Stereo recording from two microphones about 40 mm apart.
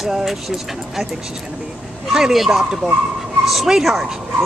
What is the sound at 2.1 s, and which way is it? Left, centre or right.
Speech, centre.